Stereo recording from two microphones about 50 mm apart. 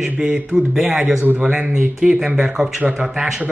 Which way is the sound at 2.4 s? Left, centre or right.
Right.